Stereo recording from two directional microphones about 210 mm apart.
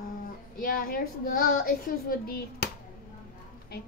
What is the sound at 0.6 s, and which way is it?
Speech, 45° left (ahead or behind).